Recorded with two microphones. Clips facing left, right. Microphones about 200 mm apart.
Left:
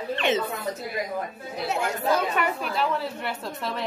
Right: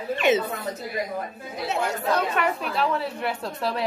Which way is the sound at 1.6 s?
5° left (ahead or behind).